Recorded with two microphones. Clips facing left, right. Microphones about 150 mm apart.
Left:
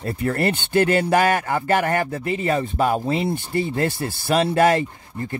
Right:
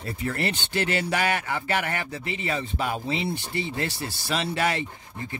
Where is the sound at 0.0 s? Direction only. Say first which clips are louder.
Left 7 dB; 50° left (ahead or behind).